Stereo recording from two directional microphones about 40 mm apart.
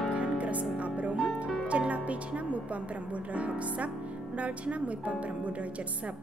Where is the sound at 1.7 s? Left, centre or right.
Right.